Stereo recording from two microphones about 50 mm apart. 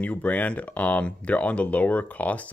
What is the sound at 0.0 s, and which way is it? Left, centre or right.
Speech, left.